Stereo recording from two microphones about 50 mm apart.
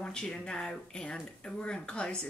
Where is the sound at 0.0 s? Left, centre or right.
Centre.